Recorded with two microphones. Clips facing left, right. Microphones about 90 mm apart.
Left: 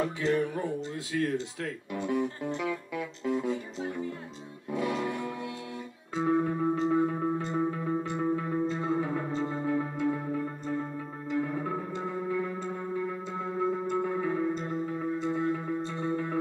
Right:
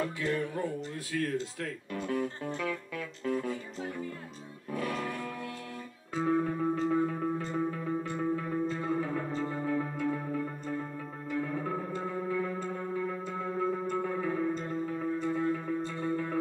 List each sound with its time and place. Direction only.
0.0 s speech: 20° left (ahead or behind)
4.6 s music: 20° left (ahead or behind)